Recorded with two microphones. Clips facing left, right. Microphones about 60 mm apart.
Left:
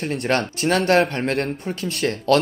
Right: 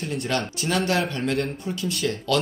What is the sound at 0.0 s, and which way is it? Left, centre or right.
Speech, left.